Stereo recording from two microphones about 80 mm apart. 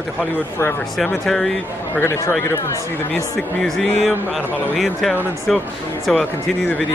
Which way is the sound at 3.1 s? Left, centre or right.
Centre.